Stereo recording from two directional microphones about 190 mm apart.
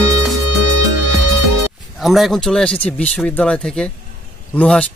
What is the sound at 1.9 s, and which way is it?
Speech, centre (ahead or behind).